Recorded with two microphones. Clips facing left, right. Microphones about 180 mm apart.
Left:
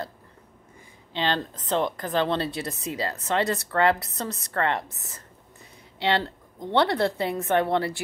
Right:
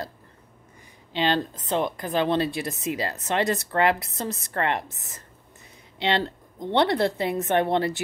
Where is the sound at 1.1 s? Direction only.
15° right (ahead or behind).